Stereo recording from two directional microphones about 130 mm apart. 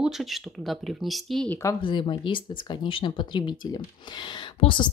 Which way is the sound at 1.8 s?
40° left (ahead or behind).